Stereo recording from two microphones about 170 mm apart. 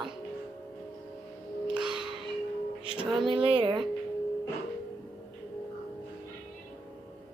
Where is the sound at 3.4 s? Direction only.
30° right (ahead or behind).